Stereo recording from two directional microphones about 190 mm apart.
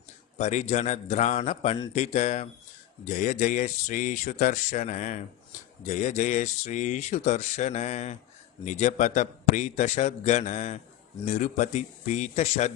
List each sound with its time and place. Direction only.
0.4 s speech: 40° left (ahead or behind)